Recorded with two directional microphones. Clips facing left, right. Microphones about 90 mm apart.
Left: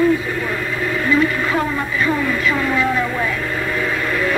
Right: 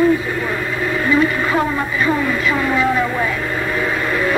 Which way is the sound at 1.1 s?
20° right (ahead or behind).